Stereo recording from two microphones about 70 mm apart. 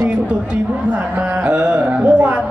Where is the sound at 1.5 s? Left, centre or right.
Centre.